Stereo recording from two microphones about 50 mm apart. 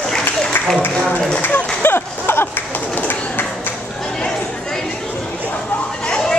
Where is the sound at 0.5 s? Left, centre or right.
Left.